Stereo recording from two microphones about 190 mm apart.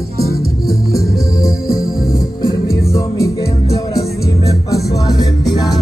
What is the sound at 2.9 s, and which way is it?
Music, 20° left (ahead or behind).